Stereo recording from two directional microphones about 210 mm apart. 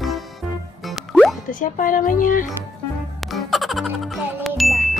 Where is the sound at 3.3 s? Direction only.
Centre (ahead or behind).